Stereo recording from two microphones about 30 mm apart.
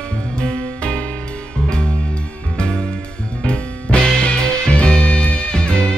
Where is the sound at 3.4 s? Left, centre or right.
Left.